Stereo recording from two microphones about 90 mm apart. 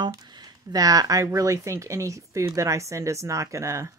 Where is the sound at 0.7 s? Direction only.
40° right (ahead or behind).